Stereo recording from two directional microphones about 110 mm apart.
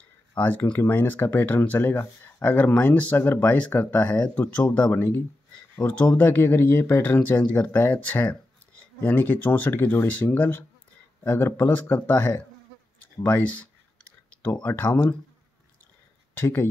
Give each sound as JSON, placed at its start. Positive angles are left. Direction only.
{"t": 0.4, "sound": "speech", "side_deg": 15}
{"t": 16.3, "sound": "speech", "side_deg": 20}